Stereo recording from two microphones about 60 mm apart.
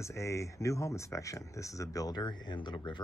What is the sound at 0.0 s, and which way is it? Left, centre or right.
Speech, left.